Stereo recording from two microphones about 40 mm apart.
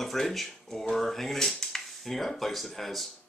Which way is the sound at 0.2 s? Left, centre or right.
Centre.